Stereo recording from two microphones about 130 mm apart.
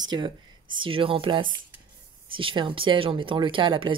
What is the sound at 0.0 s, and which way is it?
Speech, 35° right (ahead or behind).